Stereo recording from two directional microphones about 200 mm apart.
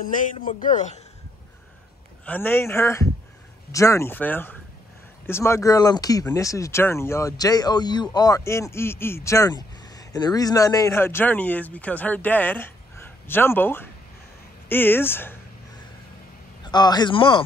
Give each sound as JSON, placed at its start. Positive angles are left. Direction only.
{"t": 0.0, "sound": "a man's voice", "side_deg": 40}
{"t": 2.2, "sound": "speech", "side_deg": 10}
{"t": 16.6, "sound": "a man's voice", "side_deg": 20}